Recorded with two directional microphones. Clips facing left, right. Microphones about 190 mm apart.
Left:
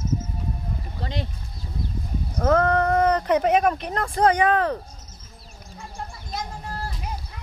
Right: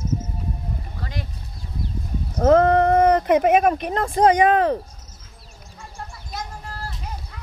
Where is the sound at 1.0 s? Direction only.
25° left (ahead or behind).